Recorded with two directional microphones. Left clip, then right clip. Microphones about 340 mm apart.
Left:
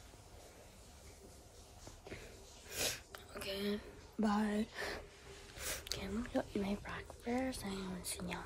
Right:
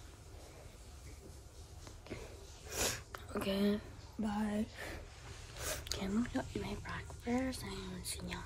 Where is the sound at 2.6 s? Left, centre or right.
Centre.